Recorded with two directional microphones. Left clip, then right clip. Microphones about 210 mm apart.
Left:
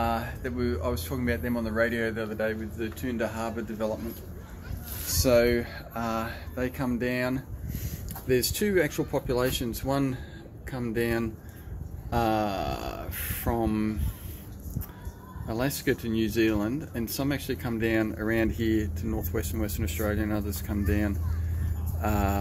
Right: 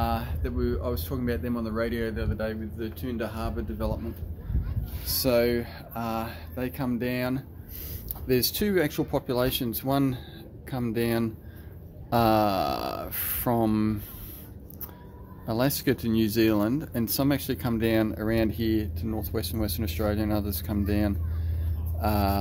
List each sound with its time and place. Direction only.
0.0 s speech: 15° right (ahead or behind)
5.2 s speech: 15° right (ahead or behind); by 14.0 s 30° right (ahead or behind)
15.4 s speech: 25° right (ahead or behind)